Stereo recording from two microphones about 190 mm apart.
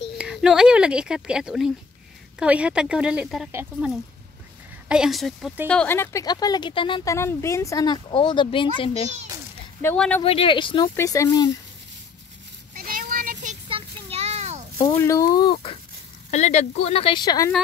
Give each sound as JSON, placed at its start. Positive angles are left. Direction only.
{"t": 0.2, "sound": "speech", "side_deg": -5}
{"t": 4.8, "sound": "speech", "side_deg": -5}
{"t": 7.2, "sound": "speech", "side_deg": 15}
{"t": 9.8, "sound": "speech", "side_deg": 10}
{"t": 10.2, "sound": "speech", "side_deg": 30}
{"t": 12.7, "sound": "child singing", "side_deg": -50}
{"t": 13.7, "sound": "a sound", "side_deg": -30}
{"t": 14.8, "sound": "speech", "side_deg": 15}